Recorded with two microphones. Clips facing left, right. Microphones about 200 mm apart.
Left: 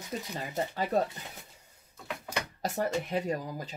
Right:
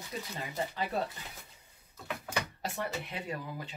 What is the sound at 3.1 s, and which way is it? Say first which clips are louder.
Speech: left 7 dB; 40° left (ahead or behind).